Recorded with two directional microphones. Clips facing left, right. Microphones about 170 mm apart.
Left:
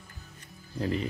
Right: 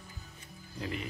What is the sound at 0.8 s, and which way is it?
Speech, 35° left (ahead or behind).